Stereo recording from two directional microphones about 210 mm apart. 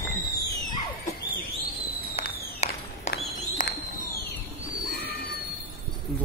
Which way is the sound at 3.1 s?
50° left (ahead or behind).